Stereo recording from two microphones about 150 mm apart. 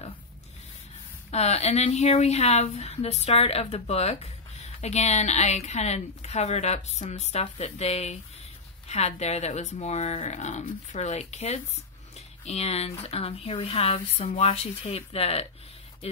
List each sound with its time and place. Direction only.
1.3 s a woman's voice: 45° left (ahead or behind)